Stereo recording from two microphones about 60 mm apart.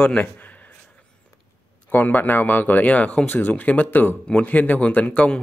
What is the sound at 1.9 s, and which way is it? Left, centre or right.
A man's voice, left.